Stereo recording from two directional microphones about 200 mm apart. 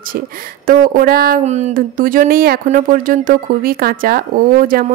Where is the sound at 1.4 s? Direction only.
35° right (ahead or behind).